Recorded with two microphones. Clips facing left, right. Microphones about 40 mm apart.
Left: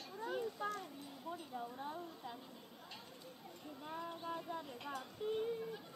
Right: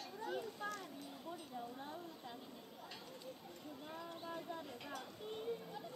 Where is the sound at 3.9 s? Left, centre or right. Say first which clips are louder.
Left 5 dB; centre.